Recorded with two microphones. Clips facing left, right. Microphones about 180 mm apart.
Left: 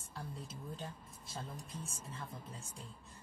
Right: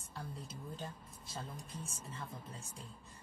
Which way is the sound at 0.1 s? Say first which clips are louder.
Even; centre (ahead or behind).